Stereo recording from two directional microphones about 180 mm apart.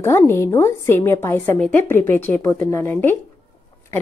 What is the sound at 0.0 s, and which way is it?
A woman's voice, 15° left (ahead or behind).